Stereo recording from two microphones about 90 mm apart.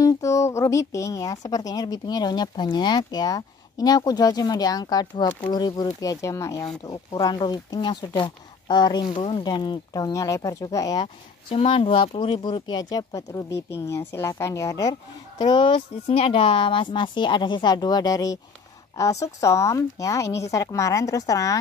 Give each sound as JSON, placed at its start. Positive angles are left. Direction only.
{"t": 0.0, "sound": "a woman's voice", "side_deg": 35}
{"t": 5.9, "sound": "a woman's voice", "side_deg": 35}
{"t": 7.2, "sound": "a woman's voice", "side_deg": 50}
{"t": 11.5, "sound": "a woman's voice", "side_deg": 90}